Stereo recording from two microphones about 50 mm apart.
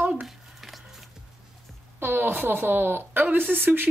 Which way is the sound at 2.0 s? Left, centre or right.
Right.